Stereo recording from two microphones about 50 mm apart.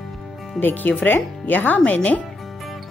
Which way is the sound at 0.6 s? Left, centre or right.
Left.